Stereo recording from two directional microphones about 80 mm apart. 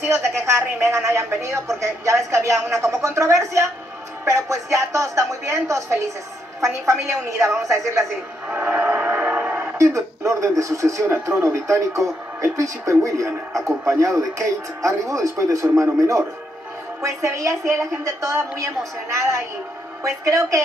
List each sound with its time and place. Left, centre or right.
0.1 s speech: right
7.1 s speech: right
8.5 s train: centre
9.8 s speech: right
20.0 s speech: right